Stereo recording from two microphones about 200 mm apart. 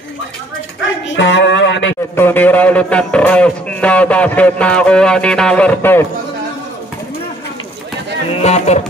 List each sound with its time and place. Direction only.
1.0 s a sound: 65° left (ahead or behind)
2.1 s speech: 10° left (ahead or behind)
8.3 s music: 30° left (ahead or behind)